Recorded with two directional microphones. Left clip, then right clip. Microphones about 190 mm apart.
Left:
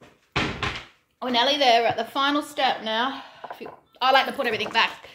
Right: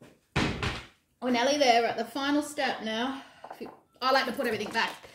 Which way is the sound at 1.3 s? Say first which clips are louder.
Left 5 dB; 25° right (ahead or behind).